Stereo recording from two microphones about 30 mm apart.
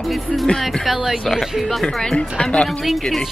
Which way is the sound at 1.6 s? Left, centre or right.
Centre.